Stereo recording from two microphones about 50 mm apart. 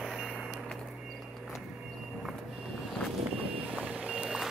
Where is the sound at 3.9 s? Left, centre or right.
Centre.